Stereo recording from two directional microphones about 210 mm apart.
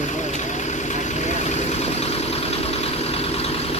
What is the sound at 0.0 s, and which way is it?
Vehicle, 35° left (ahead or behind).